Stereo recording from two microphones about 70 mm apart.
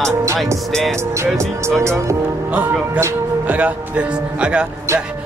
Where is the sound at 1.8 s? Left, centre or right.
Right.